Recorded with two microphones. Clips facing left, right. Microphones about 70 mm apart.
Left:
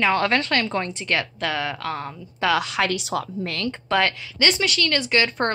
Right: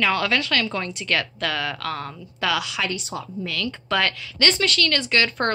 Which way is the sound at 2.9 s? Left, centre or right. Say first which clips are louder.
Left 5 dB; left.